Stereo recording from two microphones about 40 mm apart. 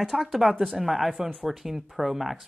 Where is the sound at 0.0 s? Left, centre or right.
Centre.